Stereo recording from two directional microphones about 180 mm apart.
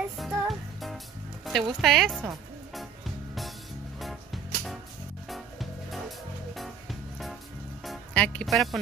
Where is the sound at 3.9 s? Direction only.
Centre (ahead or behind).